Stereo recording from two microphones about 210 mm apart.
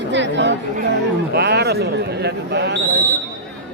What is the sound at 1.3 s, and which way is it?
Speech, 50° right (ahead or behind).